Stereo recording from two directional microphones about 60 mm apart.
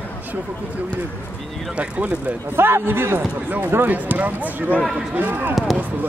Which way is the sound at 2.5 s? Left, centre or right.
Right.